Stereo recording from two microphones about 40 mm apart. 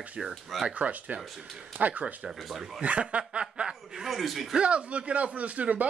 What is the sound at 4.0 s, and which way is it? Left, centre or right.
Speech, centre.